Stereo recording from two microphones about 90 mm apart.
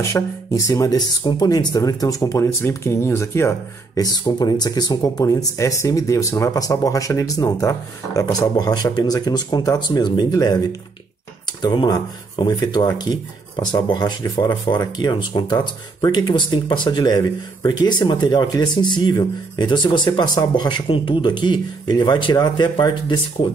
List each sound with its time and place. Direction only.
0.0 s speech: 35° left (ahead or behind); by 23.2 s 55° left (ahead or behind)